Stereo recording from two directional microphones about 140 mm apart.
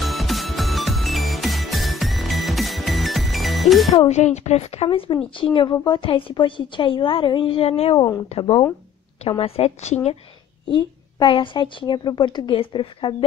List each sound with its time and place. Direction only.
0.0 s music: centre (ahead or behind)
4.0 s a woman's voice: 55° left (ahead or behind)
10.7 s a woman's voice: 35° left (ahead or behind)